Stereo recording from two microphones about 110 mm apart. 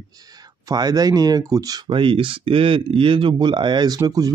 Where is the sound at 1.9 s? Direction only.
50° right (ahead or behind).